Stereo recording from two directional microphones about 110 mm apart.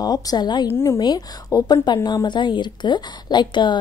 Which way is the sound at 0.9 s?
40° left (ahead or behind).